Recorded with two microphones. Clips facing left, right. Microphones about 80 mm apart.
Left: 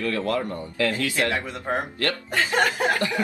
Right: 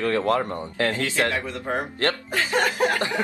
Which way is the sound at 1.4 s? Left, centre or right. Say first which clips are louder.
Even; centre.